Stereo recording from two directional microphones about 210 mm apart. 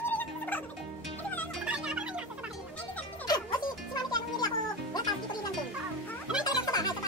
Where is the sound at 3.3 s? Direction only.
20° left (ahead or behind).